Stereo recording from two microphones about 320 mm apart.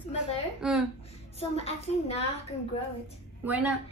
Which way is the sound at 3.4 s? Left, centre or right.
Centre.